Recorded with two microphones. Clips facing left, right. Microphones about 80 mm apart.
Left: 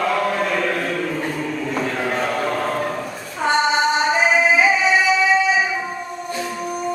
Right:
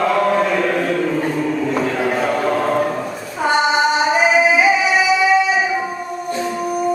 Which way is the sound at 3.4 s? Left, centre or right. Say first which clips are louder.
Right 2 dB; centre.